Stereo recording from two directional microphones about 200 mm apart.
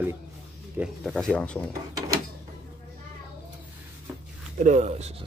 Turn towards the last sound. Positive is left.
turn(degrees=-35)  # may be behind; listen again after turning